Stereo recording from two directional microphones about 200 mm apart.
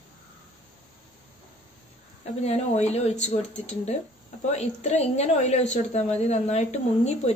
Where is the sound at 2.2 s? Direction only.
35° left (ahead or behind).